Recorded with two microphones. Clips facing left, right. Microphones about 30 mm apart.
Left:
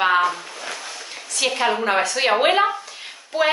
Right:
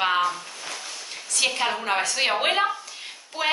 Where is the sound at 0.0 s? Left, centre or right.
Centre.